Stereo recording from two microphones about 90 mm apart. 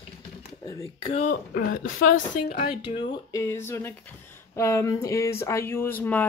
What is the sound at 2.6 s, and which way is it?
Speech, 85° left.